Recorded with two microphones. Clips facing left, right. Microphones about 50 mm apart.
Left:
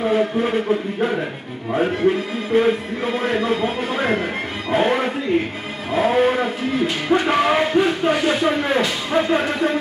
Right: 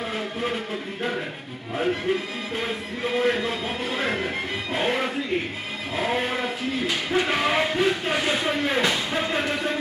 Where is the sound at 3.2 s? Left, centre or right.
Left.